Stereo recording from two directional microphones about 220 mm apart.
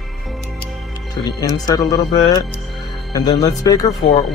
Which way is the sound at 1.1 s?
15° left (ahead or behind).